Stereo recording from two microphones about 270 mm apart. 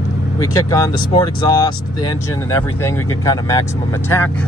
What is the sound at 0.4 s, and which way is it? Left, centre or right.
Speech, centre.